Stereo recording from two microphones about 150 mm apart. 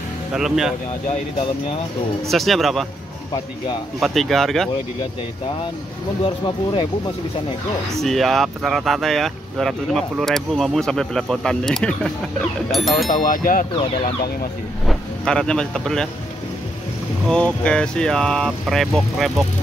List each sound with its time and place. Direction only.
0.3 s speech: 5° right (ahead or behind)
2.2 s speech: centre (ahead or behind)
4.0 s speech: centre (ahead or behind)
6.2 s speech: 35° left (ahead or behind)
7.9 s speech: centre (ahead or behind)
13.1 s speech: 65° left (ahead or behind)
14.9 s speech: 5° left (ahead or behind)
17.3 s speech: 5° left (ahead or behind)